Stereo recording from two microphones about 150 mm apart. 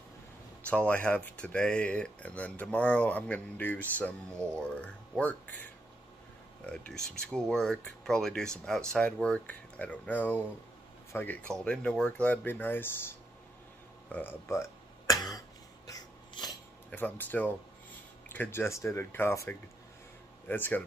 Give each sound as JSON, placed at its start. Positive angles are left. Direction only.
{"t": 0.7, "sound": "speech", "side_deg": 10}
{"t": 14.0, "sound": "throat clearing", "side_deg": 10}
{"t": 15.9, "sound": "a sound", "side_deg": 25}
{"t": 16.9, "sound": "speech", "side_deg": 10}